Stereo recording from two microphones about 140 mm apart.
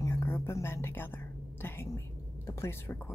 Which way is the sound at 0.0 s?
20° left (ahead or behind).